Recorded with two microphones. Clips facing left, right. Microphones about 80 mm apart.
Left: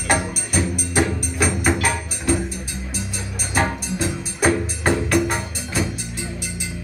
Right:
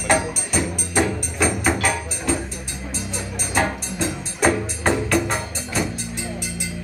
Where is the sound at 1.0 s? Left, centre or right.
Centre.